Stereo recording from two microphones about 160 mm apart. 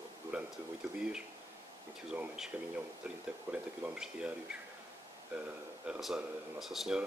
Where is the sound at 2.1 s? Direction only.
5° right (ahead or behind).